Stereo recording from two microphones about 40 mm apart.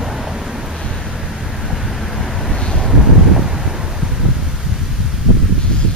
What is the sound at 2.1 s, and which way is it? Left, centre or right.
Vehicle, centre.